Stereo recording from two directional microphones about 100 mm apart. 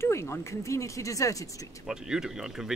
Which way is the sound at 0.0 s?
25° left (ahead or behind).